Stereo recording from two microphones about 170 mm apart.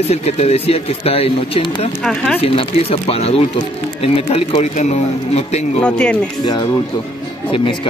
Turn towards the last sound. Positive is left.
turn(degrees=30)  # may be behind; listen again after turning